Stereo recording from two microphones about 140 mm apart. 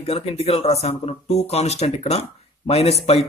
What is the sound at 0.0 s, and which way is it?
Speech, 45° left (ahead or behind).